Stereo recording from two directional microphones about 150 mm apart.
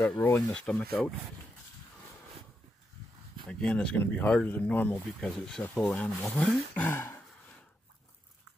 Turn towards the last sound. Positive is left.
turn(degrees=15)  # may be behind; listen again after turning